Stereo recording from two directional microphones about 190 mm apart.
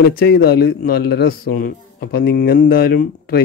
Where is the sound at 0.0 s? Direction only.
55° left (ahead or behind).